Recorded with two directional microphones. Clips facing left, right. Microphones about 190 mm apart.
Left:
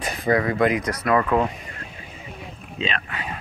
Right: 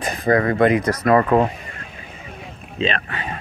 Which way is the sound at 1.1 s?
40° right (ahead or behind).